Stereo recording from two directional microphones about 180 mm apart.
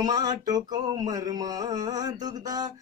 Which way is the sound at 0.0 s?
20° right (ahead or behind).